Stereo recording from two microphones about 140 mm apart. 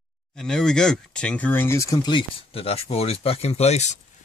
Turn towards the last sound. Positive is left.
turn(degrees=50)  # may be behind; listen again after turning